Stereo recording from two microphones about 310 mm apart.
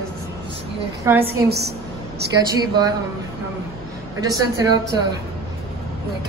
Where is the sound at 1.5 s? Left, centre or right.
Right.